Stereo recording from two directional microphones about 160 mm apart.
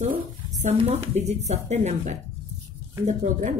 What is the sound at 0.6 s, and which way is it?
Speech, 45° right (ahead or behind).